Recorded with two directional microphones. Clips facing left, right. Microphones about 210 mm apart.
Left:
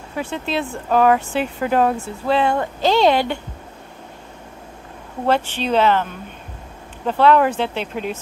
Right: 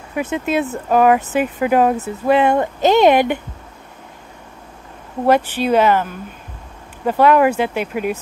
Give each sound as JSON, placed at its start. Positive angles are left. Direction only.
{"t": 0.1, "sound": "speech", "side_deg": -15}
{"t": 5.2, "sound": "speech", "side_deg": -10}